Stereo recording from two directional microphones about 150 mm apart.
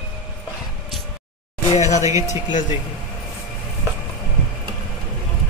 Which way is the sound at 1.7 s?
50° left (ahead or behind).